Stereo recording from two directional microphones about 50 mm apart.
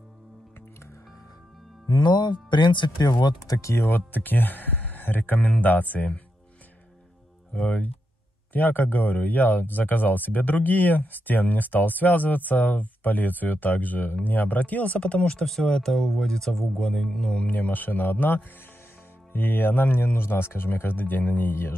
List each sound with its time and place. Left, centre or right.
3.5 s speech: left
3.8 s speech: left
7.5 s speech: left
8.5 s speech: left; by 17.4 s centre
17.4 s speech: left